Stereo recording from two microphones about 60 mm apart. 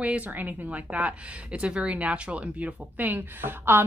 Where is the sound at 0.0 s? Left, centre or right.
Right.